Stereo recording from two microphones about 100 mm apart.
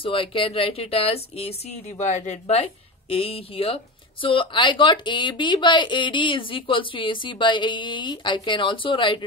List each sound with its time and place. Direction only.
0.0 s speech: 60° left (ahead or behind); by 2.6 s 90° left
3.1 s speech: 70° left (ahead or behind)